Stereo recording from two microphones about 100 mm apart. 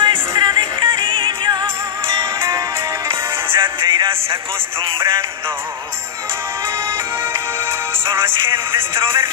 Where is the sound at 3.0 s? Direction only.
55° right (ahead or behind).